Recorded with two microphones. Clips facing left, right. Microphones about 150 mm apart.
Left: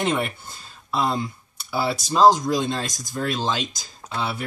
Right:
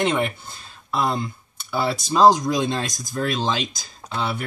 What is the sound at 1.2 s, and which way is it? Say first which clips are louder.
Speech: even; 5° left (ahead or behind).